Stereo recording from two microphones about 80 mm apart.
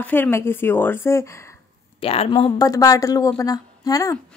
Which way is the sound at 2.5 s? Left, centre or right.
Left.